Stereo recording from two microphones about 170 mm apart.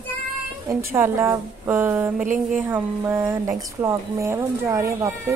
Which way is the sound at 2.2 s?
50° right (ahead or behind).